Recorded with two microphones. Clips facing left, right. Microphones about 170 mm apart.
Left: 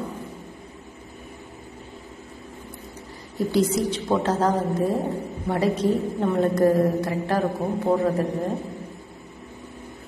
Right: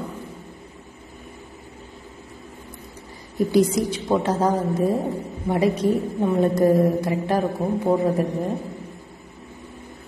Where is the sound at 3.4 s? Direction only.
15° right (ahead or behind).